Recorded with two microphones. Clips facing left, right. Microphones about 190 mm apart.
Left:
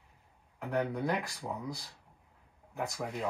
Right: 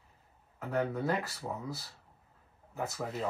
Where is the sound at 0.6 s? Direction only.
15° left (ahead or behind).